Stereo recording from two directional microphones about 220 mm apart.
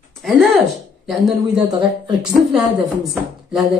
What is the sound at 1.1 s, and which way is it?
Speech, centre (ahead or behind).